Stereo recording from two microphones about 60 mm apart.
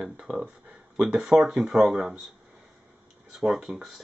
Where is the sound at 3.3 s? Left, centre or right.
Centre.